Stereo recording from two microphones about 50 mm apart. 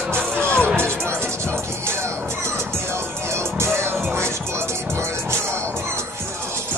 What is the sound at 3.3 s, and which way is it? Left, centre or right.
Music, right.